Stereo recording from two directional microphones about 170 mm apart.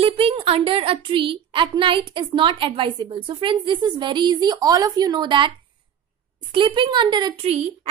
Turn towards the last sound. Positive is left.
turn(degrees=-35)  # may be behind; listen again after turning